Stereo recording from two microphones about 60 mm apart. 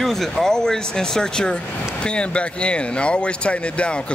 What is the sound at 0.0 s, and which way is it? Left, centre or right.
Speech, centre.